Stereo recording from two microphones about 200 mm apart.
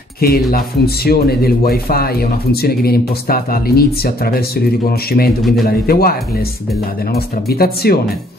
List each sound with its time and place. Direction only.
0.2 s speech: 50° left (ahead or behind)